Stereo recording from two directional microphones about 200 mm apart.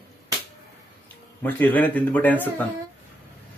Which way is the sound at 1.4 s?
10° left (ahead or behind).